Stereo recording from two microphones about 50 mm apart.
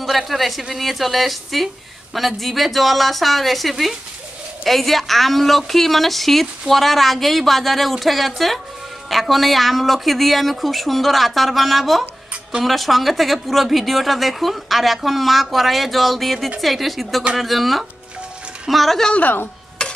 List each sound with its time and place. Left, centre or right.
0.0 s a woman's voice: centre
19.1 s speech: left
19.8 s a sound: left